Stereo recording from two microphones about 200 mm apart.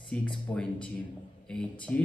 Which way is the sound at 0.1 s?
5° left (ahead or behind).